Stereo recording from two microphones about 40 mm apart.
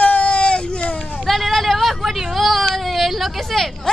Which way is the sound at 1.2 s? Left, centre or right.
Centre.